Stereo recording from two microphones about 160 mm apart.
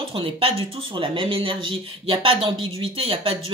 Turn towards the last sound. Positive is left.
turn(degrees=-35)  # may be behind; listen again after turning